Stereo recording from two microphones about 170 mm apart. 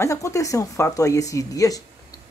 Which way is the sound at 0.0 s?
20° left (ahead or behind).